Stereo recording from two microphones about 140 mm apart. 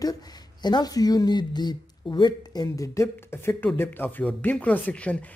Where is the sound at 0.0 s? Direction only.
30° left (ahead or behind).